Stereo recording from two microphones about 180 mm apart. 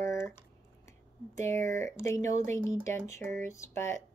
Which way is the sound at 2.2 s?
40° right (ahead or behind).